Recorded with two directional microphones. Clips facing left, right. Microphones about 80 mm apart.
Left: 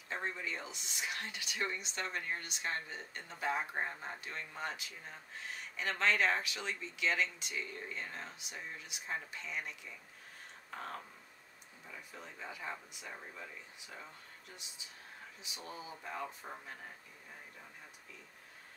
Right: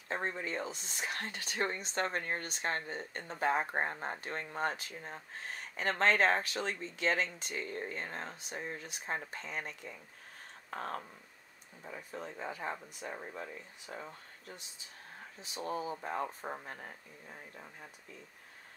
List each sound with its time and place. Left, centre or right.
0.1 s speech: right
10.7 s a sound: right
11.8 s speech: right